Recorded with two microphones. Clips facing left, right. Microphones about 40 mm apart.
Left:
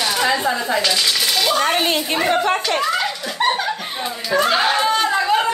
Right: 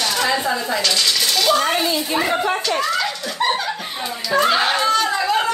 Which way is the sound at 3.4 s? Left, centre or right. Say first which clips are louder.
Left 1 dB; left.